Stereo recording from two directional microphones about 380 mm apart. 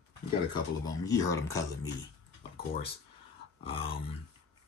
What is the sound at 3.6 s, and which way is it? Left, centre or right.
Speech, centre.